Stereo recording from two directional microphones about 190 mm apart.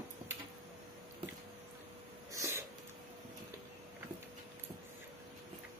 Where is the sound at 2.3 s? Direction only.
15° right (ahead or behind).